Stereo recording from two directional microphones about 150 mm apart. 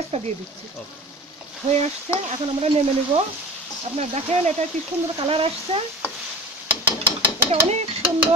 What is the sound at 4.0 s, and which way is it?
Speech, 50° right (ahead or behind).